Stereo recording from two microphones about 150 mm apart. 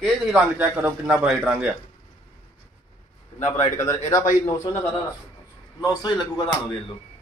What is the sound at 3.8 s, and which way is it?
Speech, 20° left (ahead or behind).